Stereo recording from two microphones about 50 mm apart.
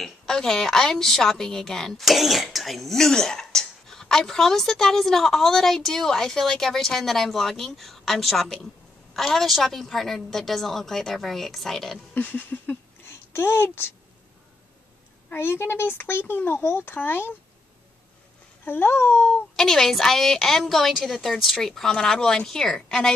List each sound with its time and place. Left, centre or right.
0.0 s a woman's voice: centre
12.1 s a sound: left
13.3 s speech: left
15.3 s speech: left
18.6 s speech: left
19.5 s a woman's voice: centre